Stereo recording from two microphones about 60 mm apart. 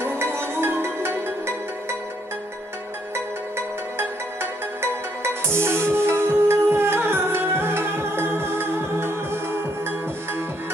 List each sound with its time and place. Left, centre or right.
0.0 s music: right
5.2 s music: right